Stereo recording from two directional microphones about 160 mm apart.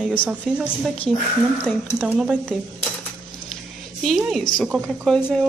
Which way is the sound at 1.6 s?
10° left (ahead or behind).